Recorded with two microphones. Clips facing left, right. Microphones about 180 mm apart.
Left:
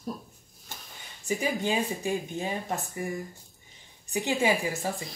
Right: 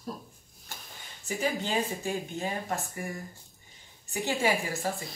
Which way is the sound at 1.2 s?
15° left (ahead or behind).